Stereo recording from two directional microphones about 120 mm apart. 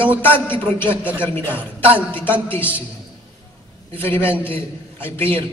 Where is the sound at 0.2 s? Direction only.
15° left (ahead or behind).